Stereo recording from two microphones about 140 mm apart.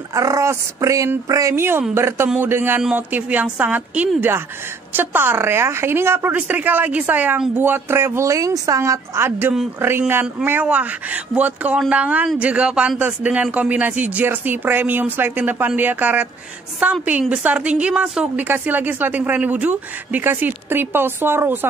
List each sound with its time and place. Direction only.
0.1 s a woman's voice: 25° right (ahead or behind)